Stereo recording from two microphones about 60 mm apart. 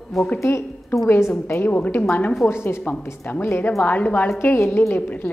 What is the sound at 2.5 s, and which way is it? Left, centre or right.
A woman's voice, left.